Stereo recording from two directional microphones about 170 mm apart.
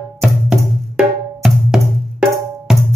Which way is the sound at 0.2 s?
Centre (ahead or behind).